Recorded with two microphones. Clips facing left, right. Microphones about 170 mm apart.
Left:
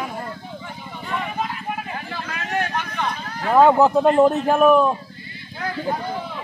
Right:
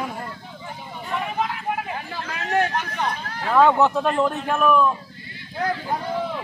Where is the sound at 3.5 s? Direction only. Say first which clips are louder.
Left 3 dB; 30° left (ahead or behind).